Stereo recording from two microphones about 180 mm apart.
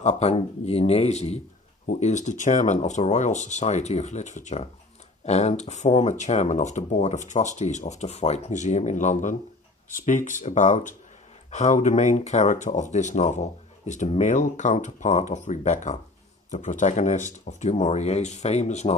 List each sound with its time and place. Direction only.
0.0 s speech: 35° left (ahead or behind)